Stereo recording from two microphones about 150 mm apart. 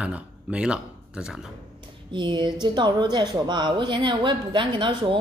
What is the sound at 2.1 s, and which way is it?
Speech, 30° right (ahead or behind).